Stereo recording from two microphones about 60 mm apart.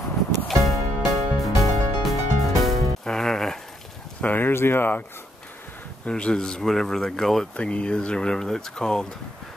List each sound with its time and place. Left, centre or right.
0.5 s music: centre
4.2 s speech: left
6.0 s speech: centre
7.5 s speech: centre